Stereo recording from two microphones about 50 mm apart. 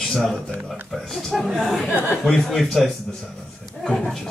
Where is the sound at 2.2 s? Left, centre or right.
Centre.